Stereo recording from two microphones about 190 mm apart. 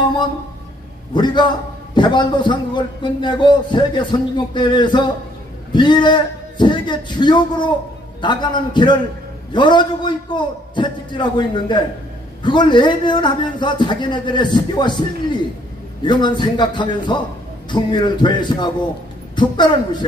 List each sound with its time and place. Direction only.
1.1 s a man's voice: 25° left (ahead or behind)